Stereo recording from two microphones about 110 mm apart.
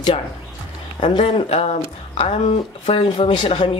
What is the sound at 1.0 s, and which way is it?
Speech, 55° left (ahead or behind).